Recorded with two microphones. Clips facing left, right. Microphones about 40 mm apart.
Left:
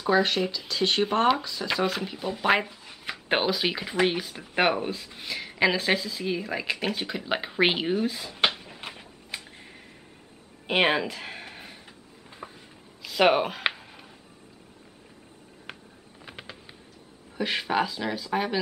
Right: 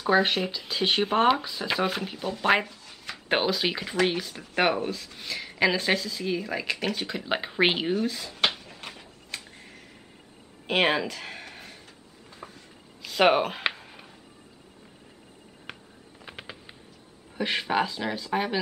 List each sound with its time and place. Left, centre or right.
0.2 s speech: centre
2.0 s speech: centre
10.7 s speech: centre
12.4 s a sound: centre
13.0 s speech: centre
15.7 s a sound: centre
17.4 s speech: centre